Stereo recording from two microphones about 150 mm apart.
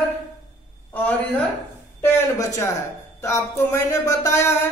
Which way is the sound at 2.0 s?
20° left (ahead or behind).